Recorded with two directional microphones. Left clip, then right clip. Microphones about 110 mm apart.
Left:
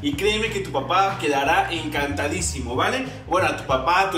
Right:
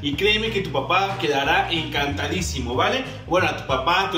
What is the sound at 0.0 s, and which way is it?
A man's voice, centre (ahead or behind).